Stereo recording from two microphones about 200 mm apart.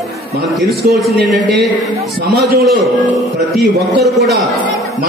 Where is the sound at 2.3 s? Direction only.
50° right (ahead or behind).